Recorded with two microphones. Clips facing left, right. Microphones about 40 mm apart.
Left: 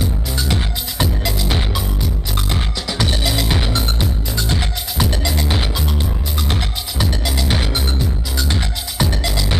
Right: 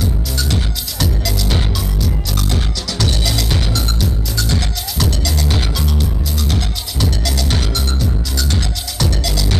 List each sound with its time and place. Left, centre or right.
0.0 s music: left